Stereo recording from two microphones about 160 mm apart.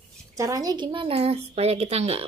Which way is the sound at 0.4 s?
20° right (ahead or behind).